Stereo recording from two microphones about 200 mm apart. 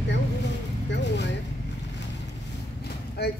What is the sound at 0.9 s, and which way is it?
Speech, 60° left (ahead or behind).